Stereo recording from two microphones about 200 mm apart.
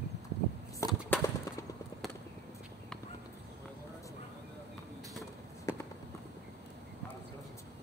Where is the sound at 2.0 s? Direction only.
Centre (ahead or behind).